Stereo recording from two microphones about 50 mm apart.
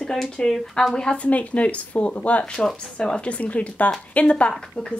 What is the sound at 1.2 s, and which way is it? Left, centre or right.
Speech, left.